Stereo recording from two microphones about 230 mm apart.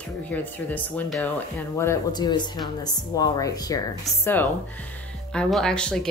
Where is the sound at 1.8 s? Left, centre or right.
Centre.